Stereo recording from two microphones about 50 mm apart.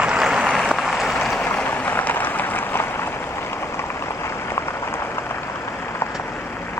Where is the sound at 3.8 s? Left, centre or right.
Left.